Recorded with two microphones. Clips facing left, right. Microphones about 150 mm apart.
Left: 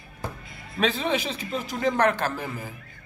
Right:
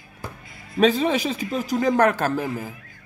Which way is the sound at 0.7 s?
40° right (ahead or behind).